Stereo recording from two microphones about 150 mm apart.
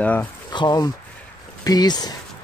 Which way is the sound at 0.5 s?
30° left (ahead or behind).